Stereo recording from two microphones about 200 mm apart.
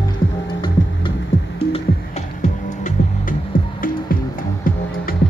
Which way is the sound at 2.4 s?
40° left (ahead or behind).